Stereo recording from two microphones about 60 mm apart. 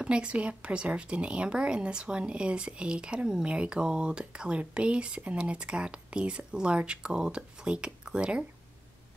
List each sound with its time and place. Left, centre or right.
0.0 s speech: centre